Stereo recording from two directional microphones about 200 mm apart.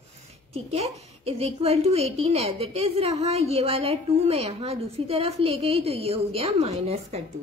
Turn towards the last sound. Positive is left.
turn(degrees=-30)  # may be behind; listen again after turning